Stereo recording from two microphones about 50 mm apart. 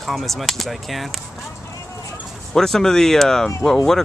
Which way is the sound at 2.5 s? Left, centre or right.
Centre.